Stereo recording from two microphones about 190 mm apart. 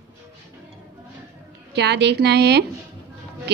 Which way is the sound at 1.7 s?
60° right (ahead or behind).